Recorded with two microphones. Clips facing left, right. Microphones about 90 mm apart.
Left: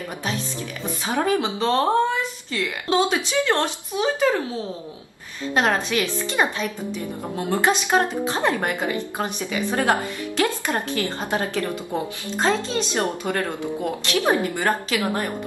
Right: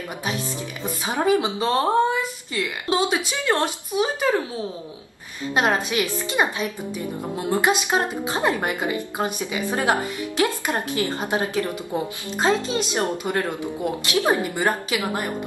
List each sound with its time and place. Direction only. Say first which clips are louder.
1.0 s speech: right 1 dB; 15° right (ahead or behind)
5.5 s speech: even; 15° right (ahead or behind)